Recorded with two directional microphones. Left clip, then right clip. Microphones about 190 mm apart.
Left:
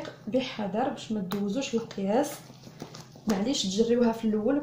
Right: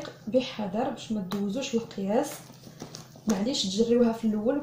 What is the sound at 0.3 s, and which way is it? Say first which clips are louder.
Speech: right 2 dB; 25° left (ahead or behind).